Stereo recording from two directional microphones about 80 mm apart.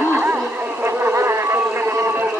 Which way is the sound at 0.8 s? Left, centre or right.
Right.